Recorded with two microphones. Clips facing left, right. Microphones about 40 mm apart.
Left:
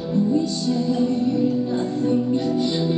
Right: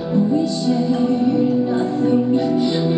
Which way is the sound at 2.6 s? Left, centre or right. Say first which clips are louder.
Right 4 dB; centre.